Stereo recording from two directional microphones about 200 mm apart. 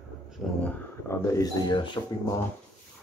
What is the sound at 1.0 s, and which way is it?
Speech, 15° left (ahead or behind).